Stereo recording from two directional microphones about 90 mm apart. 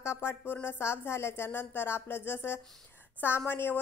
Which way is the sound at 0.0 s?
30° left (ahead or behind).